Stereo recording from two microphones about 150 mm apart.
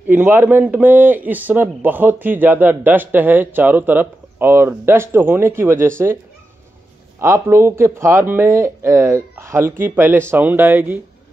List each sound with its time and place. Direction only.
0.0 s a man's voice: 15° right (ahead or behind)
7.2 s a man's voice: 15° right (ahead or behind)